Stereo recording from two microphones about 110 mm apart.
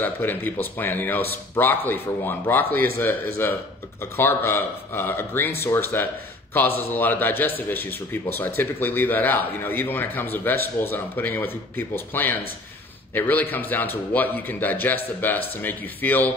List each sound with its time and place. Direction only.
0.0 s a man's voice: 15° left (ahead or behind)